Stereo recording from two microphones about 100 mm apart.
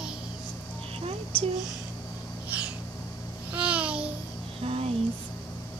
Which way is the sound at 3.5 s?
10° right (ahead or behind).